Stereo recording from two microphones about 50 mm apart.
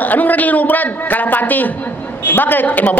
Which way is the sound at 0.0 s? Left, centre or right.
Left.